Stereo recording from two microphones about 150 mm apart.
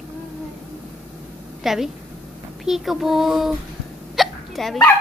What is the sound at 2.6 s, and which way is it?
Child singing, centre (ahead or behind).